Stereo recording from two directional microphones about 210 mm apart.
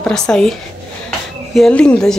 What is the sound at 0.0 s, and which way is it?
Speech, 5° left (ahead or behind).